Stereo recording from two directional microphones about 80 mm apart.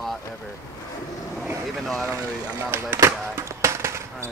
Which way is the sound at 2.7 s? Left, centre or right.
Right.